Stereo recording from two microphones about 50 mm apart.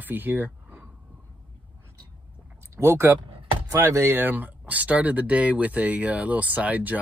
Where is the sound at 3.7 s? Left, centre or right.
Right.